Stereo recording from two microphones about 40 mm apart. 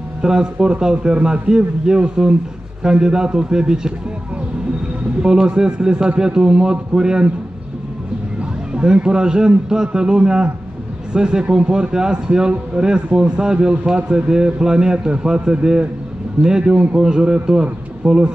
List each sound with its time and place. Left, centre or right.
0.2 s a man's voice: centre
5.2 s a man's voice: centre
8.4 s a man's voice: right